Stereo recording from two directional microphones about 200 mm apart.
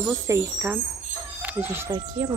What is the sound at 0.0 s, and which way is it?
Speech, 15° right (ahead or behind).